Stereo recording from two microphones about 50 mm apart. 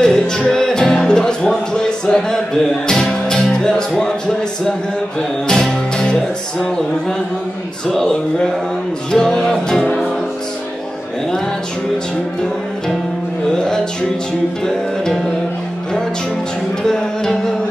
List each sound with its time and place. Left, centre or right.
0.0 s music: centre
5.5 s music: centre
7.8 s speech: centre
9.1 s music: centre
16.8 s music: centre